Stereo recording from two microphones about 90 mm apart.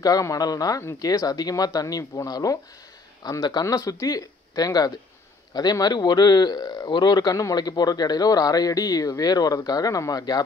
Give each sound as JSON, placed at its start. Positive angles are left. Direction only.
{"t": 0.0, "sound": "speech", "side_deg": 40}
{"t": 3.6, "sound": "speech", "side_deg": 35}